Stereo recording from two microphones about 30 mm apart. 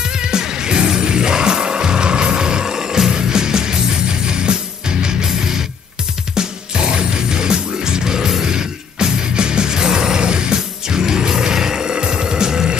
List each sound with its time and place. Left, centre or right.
0.2 s music: right
6.3 s music: right